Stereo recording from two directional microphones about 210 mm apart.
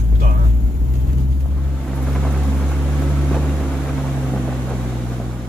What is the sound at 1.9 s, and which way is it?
Boat, centre (ahead or behind).